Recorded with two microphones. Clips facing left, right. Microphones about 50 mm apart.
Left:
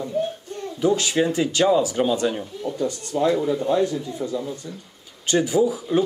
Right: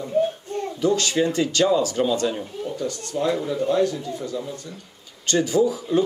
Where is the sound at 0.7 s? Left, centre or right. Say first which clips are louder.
Left 1 dB; centre.